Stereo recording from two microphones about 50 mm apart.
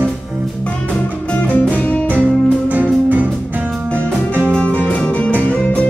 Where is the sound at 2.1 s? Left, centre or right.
Right.